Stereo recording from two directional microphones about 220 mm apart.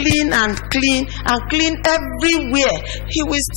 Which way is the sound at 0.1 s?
10° left (ahead or behind).